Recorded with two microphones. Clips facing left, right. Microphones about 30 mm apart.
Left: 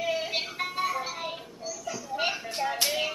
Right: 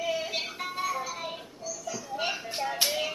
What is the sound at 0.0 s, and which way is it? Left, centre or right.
Music, centre.